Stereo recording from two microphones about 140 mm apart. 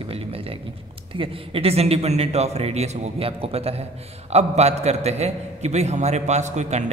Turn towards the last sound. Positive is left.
turn(degrees=-55)  # may be behind; listen again after turning